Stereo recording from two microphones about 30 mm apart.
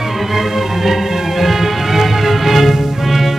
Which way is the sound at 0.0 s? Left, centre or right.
Centre.